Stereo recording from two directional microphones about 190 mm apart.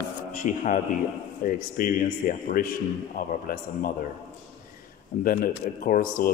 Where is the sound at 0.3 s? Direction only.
40° left (ahead or behind).